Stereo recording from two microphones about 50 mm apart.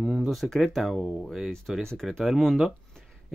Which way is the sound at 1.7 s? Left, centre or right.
Centre.